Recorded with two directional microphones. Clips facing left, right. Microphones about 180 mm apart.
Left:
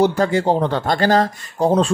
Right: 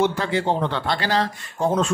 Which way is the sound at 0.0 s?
40° left (ahead or behind).